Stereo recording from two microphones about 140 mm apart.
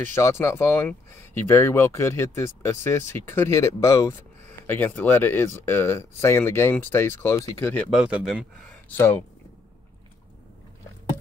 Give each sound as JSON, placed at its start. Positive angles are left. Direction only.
{"t": 0.0, "sound": "speech", "side_deg": 15}
{"t": 7.9, "sound": "a man's voice", "side_deg": -5}
{"t": 8.6, "sound": "speech", "side_deg": 15}